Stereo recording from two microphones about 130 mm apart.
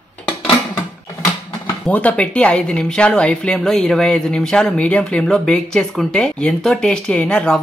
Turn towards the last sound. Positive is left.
turn(degrees=5)  # may be behind; listen again after turning